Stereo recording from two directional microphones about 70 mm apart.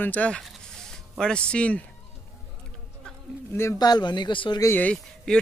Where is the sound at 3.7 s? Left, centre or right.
Left.